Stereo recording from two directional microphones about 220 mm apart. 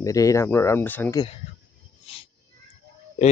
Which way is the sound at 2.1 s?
25° left (ahead or behind).